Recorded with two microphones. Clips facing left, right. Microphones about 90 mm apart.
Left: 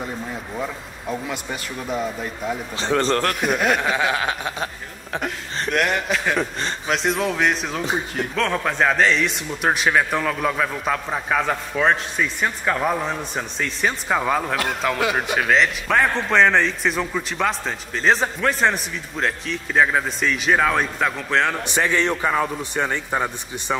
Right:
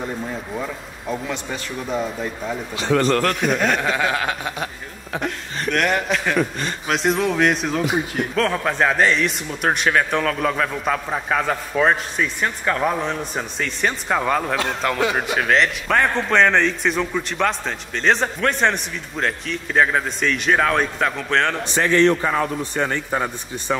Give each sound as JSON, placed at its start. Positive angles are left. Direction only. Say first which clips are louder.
{"t": 0.6, "sound": "a man's voice", "louder": "even", "side_deg": 5}
{"t": 2.7, "sound": "speech", "louder": "right 2 dB", "side_deg": 30}
{"t": 3.3, "sound": "a man's voice", "louder": "even", "side_deg": 5}
{"t": 5.7, "sound": "a man's voice", "louder": "right 1 dB", "side_deg": 0}
{"t": 21.6, "sound": "a man's voice", "louder": "right 4 dB", "side_deg": 15}
{"t": 22.2, "sound": "a man's voice", "louder": "even", "side_deg": 5}
{"t": 22.6, "sound": "a man's voice", "louder": "right 1 dB", "side_deg": 15}